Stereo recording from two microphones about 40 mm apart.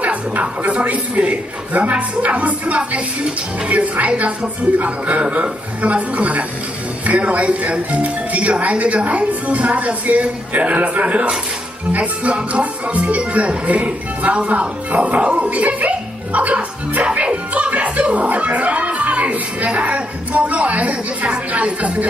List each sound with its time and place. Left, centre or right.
0.0 s speech: right